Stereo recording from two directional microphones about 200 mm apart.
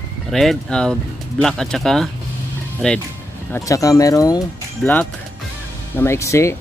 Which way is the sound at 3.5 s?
15° left (ahead or behind).